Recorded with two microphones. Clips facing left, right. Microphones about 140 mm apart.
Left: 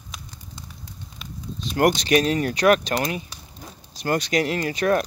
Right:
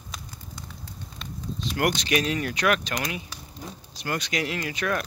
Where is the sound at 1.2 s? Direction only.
5° left (ahead or behind).